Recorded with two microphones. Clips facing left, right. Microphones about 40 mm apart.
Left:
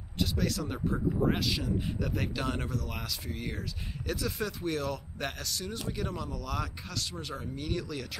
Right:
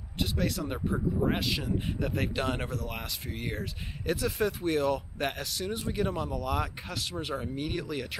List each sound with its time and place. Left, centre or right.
0.2 s speech: centre